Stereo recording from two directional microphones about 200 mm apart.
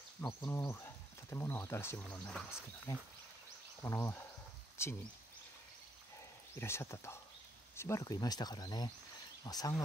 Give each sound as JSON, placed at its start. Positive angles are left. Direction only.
{"t": 0.4, "sound": "speech", "side_deg": 15}
{"t": 2.9, "sound": "speech", "side_deg": 15}
{"t": 6.6, "sound": "speech", "side_deg": 15}